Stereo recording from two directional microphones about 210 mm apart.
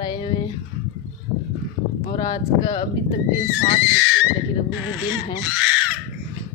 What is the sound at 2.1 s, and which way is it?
Speech, 20° left (ahead or behind).